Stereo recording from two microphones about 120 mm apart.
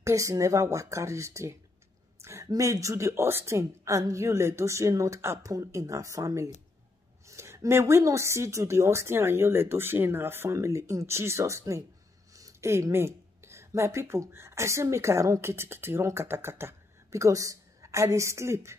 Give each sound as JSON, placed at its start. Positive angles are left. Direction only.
{"t": 0.0, "sound": "speech", "side_deg": -25}